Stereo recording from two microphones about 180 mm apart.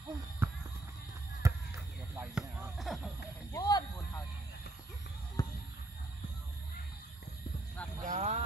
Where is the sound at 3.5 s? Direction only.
20° left (ahead or behind).